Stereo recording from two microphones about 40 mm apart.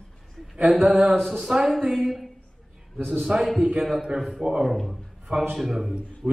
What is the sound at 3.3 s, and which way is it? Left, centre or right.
Speech, right.